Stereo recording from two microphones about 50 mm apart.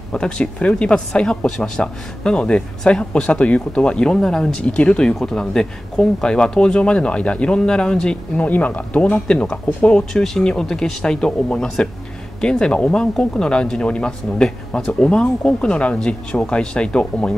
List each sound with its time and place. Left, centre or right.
0.1 s speech: left
4.6 s speech: left
8.4 s speech: left